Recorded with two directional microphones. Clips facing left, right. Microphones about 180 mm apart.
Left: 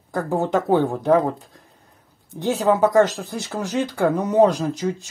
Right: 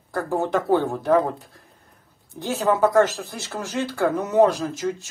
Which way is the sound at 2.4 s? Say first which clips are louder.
Left 2 dB; 15° left (ahead or behind).